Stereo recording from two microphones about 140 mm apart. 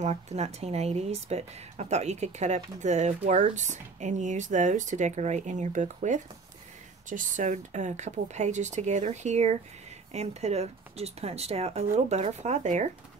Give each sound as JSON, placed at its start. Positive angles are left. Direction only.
{"t": 0.0, "sound": "speech", "side_deg": -50}